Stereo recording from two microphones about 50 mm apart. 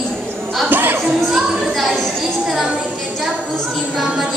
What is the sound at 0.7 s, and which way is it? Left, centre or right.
Music, right.